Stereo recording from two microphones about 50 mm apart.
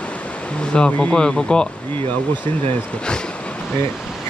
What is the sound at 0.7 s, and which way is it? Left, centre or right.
Speech, centre.